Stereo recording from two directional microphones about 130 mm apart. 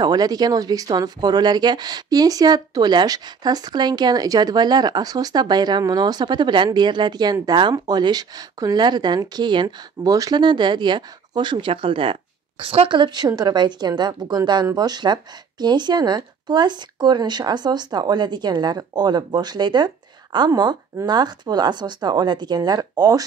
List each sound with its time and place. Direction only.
0.0 s speech: 30° right (ahead or behind)